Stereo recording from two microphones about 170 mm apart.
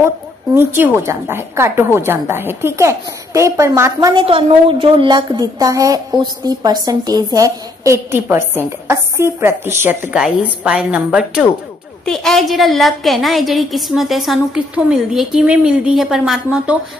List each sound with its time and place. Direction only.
0.6 s a woman's voice: 10° right (ahead or behind)